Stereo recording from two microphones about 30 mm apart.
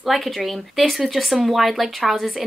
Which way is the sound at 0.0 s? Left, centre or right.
Centre.